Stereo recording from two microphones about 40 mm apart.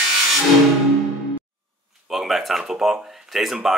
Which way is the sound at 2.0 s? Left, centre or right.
Centre.